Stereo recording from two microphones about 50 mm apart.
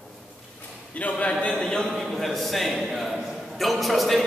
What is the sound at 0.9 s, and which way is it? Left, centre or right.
Speech, left.